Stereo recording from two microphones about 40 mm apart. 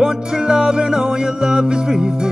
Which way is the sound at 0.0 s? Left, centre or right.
Centre.